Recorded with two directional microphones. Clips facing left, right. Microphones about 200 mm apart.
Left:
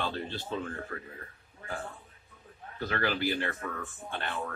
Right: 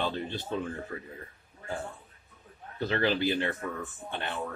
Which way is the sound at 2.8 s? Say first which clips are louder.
Right 3 dB; 25° right (ahead or behind).